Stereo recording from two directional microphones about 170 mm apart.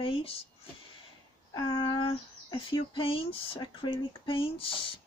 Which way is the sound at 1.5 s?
30° left (ahead or behind).